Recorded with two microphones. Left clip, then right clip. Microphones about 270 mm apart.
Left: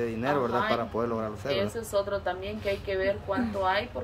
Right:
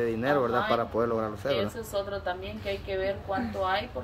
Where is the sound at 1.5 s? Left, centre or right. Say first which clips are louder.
Left 3 dB; centre.